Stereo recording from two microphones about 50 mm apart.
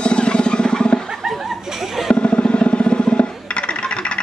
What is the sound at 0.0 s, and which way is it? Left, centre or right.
Music, centre.